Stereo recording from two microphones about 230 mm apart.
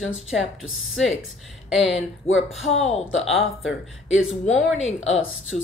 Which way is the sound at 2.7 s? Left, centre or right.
Left.